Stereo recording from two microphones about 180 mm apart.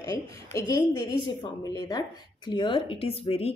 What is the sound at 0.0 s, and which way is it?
A woman's voice, 20° left (ahead or behind).